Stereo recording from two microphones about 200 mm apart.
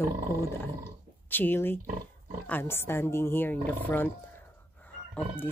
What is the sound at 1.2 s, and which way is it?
A woman's voice, 10° left (ahead or behind).